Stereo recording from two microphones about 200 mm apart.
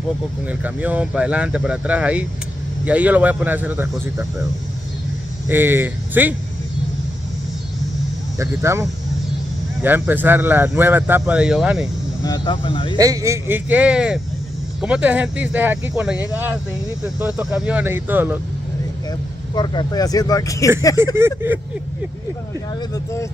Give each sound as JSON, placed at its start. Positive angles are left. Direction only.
{"t": 0.5, "sound": "speech", "side_deg": -5}
{"t": 5.5, "sound": "speech", "side_deg": -10}
{"t": 8.4, "sound": "speech", "side_deg": -15}
{"t": 12.2, "sound": "speech", "side_deg": 20}
{"t": 12.9, "sound": "speech", "side_deg": -15}
{"t": 19.5, "sound": "speech", "side_deg": 20}
{"t": 21.2, "sound": "speech", "side_deg": -10}